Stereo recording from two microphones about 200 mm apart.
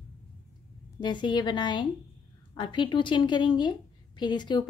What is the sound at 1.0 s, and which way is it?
A woman's voice, 20° left (ahead or behind).